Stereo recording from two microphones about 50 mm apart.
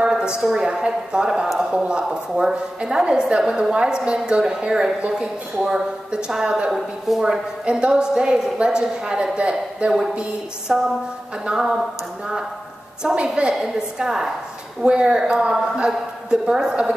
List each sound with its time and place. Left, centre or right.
0.4 s a woman's voice: centre
13.0 s a woman's voice: centre